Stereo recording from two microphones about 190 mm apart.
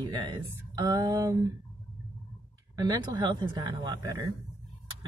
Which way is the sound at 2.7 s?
20° right (ahead or behind).